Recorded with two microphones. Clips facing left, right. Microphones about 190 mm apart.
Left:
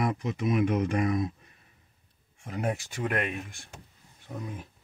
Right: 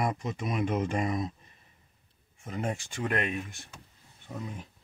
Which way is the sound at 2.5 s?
5° left (ahead or behind).